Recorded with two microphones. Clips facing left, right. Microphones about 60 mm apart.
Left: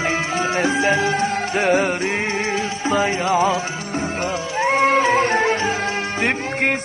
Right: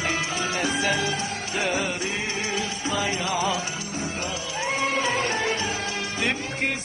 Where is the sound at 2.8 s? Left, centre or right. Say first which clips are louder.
Left 9 dB; left.